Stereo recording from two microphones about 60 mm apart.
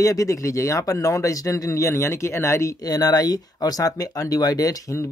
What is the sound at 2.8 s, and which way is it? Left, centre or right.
Speech, left.